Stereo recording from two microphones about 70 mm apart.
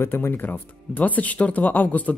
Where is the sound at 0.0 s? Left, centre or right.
Left.